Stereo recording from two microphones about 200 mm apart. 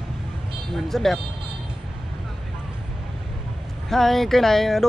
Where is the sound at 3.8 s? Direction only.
Centre (ahead or behind).